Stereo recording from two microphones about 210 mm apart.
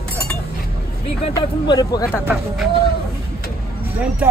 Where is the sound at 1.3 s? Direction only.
20° left (ahead or behind).